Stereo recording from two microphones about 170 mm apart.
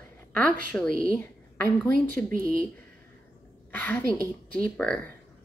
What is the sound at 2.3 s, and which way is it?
Speech, 55° right (ahead or behind).